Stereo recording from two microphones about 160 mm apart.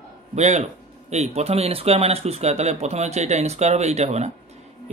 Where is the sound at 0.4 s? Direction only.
45° right (ahead or behind).